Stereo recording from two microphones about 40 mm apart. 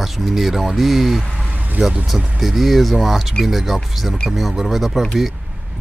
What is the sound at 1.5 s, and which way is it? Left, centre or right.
Vehicle, right.